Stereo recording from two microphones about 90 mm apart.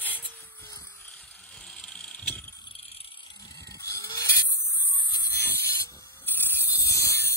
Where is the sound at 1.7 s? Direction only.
5° left (ahead or behind).